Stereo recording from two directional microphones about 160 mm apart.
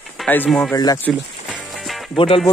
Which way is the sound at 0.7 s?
25° left (ahead or behind).